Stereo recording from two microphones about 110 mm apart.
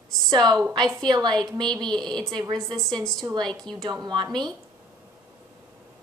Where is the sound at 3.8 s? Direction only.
40° right (ahead or behind).